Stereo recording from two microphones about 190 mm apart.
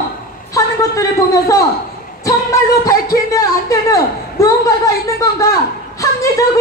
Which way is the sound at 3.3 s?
15° left (ahead or behind).